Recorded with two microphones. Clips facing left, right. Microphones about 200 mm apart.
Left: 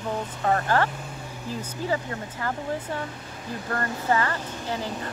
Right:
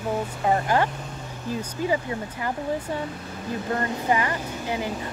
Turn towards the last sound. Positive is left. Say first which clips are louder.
# right 2 dB
turn(degrees=-15)  # may be behind; listen again after turning